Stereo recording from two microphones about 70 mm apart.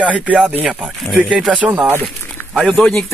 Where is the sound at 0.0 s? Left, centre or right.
Centre.